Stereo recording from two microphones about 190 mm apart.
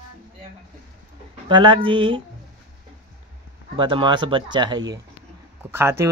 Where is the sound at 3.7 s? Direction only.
25° right (ahead or behind).